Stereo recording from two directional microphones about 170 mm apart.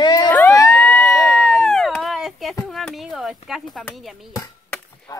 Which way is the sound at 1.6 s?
5° left (ahead or behind).